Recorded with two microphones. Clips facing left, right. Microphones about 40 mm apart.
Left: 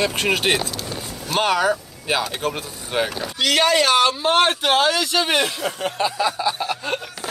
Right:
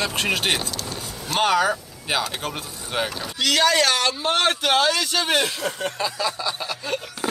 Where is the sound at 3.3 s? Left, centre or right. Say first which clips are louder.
Left 1 dB; left.